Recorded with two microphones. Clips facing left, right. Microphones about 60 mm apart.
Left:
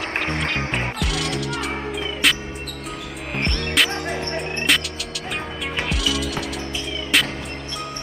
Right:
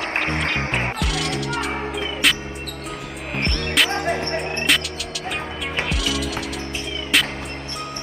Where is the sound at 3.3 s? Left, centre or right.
Centre.